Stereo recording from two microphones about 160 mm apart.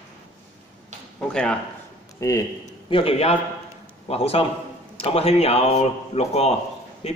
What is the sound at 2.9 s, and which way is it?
A man's voice, 35° left (ahead or behind).